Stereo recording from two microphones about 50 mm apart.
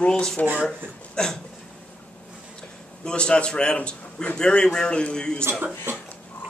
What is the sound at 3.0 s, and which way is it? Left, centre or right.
A man's voice, centre.